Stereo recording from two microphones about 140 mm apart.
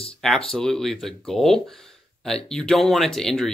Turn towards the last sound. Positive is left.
turn(degrees=5)  # may be behind; listen again after turning